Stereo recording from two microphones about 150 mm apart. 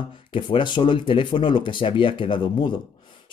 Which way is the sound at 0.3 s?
35° left (ahead or behind).